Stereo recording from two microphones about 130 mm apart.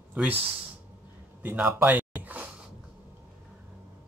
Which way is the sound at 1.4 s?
15° right (ahead or behind).